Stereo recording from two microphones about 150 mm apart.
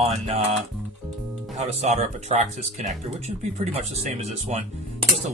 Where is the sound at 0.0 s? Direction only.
40° right (ahead or behind).